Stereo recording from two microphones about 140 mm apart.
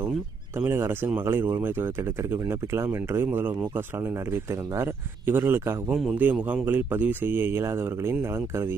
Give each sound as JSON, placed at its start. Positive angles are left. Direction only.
{"t": 0.6, "sound": "speech", "side_deg": -15}